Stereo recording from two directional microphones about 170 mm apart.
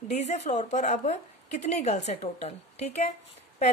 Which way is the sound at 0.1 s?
40° left (ahead or behind).